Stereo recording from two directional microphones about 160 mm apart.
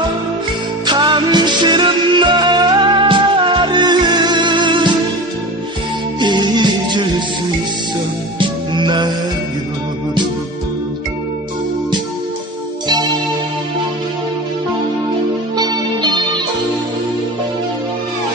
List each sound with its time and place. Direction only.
0.8 s music: 30° right (ahead or behind)
6.1 s music: 30° right (ahead or behind)
8.4 s music: 30° right (ahead or behind)
12.8 s music: 25° right (ahead or behind)
15.5 s music: 25° right (ahead or behind)